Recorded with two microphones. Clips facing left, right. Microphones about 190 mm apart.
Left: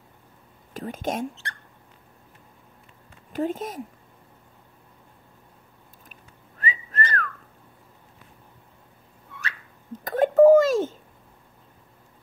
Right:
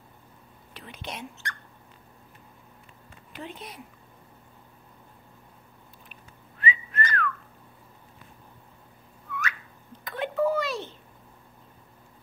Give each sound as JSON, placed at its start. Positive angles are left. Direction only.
{"t": 0.7, "sound": "speech", "side_deg": 45}
{"t": 1.4, "sound": "rodents", "side_deg": 30}
{"t": 3.3, "sound": "speech", "side_deg": 45}
{"t": 6.6, "sound": "whistling", "side_deg": 40}
{"t": 9.3, "sound": "a sound", "side_deg": 30}
{"t": 9.9, "sound": "a sound", "side_deg": 45}